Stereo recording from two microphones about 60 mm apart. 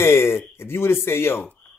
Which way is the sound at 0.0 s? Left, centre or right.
Left.